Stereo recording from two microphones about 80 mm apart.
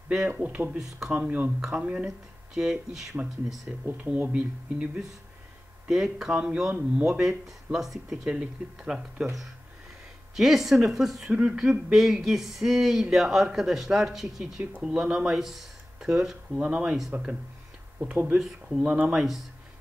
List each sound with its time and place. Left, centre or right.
0.3 s speech: centre
0.7 s speech: centre
1.1 s speech: centre
17.1 s speech: right
18.4 s speech: centre
18.9 s speech: centre